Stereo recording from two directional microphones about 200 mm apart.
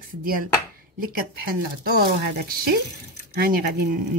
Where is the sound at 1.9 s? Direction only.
50° right (ahead or behind).